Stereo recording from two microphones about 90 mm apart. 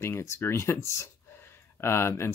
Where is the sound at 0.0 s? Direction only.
30° left (ahead or behind).